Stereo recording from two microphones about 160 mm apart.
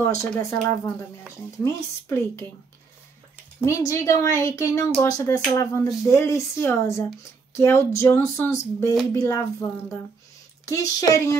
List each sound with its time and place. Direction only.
0.0 s speech: 20° left (ahead or behind)
3.6 s speech: 20° left (ahead or behind)
10.7 s speech: 20° left (ahead or behind)